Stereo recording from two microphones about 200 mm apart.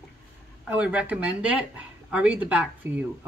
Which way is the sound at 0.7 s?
5° right (ahead or behind).